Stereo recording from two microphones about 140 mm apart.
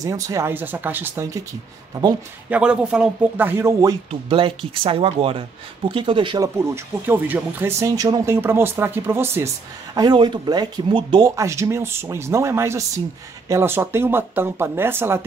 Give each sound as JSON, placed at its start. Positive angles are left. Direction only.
{"t": 0.0, "sound": "speech", "side_deg": -25}
{"t": 2.5, "sound": "speech", "side_deg": -5}
{"t": 4.1, "sound": "speech", "side_deg": -40}
{"t": 6.4, "sound": "speech", "side_deg": -20}
{"t": 9.9, "sound": "speech", "side_deg": -30}